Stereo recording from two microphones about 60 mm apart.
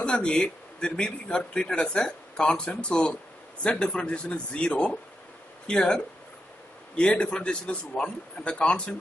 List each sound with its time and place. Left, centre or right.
0.0 s speech: centre